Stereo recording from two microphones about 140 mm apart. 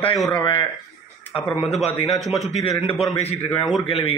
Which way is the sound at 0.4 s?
35° left (ahead or behind).